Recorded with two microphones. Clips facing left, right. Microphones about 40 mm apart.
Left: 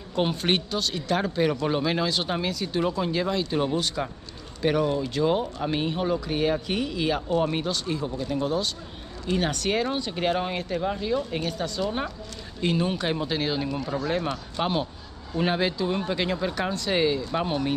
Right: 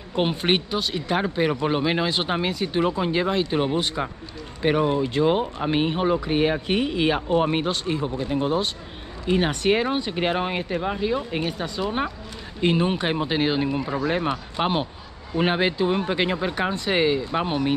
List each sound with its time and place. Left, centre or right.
0.1 s speech: right